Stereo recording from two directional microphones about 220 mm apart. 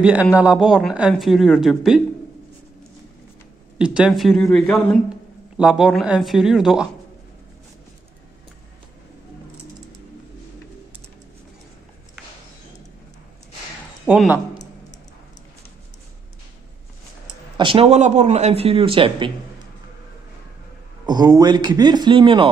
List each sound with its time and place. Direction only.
0.0 s speech: 5° right (ahead or behind)
3.7 s speech: 5° right (ahead or behind)
14.0 s speech: 5° right (ahead or behind)
17.6 s speech: 25° right (ahead or behind)
21.0 s speech: 20° right (ahead or behind)